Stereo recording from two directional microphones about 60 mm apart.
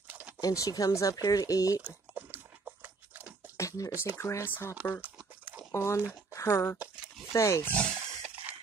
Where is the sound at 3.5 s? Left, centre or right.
Left.